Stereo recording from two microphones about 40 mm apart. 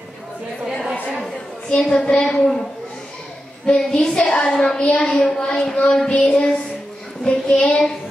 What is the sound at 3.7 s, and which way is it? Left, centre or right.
A woman's voice, left.